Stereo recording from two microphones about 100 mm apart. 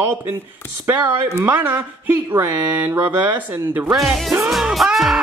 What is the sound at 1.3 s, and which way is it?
Speech, 20° right (ahead or behind).